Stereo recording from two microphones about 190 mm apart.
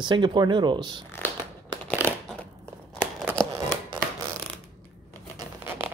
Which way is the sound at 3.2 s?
15° right (ahead or behind).